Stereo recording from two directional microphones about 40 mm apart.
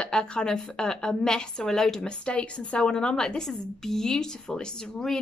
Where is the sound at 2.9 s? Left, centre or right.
Centre.